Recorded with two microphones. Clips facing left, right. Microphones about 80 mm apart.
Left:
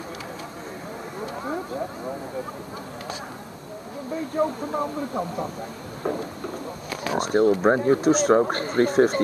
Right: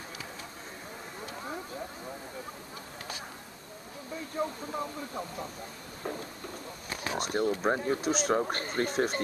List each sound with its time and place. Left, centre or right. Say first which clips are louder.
1.2 s a sound: left 9 dB; left
4.4 s speech: left 9 dB; left
7.2 s speech: left 10 dB; left